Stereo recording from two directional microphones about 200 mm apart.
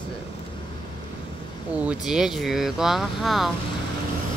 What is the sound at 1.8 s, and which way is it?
Speech, 5° right (ahead or behind).